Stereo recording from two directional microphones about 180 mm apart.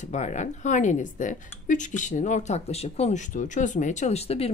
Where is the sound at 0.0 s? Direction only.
40° left (ahead or behind).